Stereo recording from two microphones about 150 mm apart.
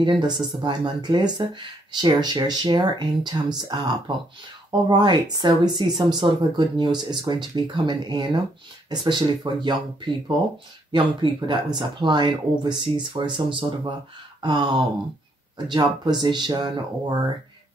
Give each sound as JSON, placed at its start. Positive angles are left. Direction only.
{"t": 0.0, "sound": "speech", "side_deg": -30}
{"t": 10.9, "sound": "speech", "side_deg": -30}